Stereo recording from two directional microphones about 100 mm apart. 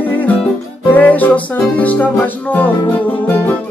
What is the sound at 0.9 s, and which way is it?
Music, 15° left (ahead or behind).